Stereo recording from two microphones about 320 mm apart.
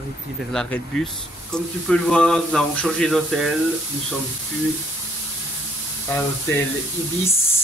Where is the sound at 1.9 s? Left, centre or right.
Centre.